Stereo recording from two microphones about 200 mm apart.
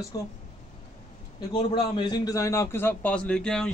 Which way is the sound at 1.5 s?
20° left (ahead or behind).